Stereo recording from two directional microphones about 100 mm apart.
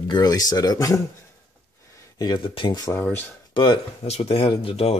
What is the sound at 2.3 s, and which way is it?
Speech, 60° left (ahead or behind).